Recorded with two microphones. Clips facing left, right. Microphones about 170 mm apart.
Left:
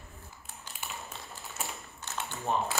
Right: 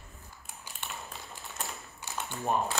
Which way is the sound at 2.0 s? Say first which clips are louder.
Right 1 dB; 15° right (ahead or behind).